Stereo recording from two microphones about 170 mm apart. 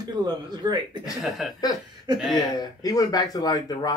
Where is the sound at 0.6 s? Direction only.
25° right (ahead or behind).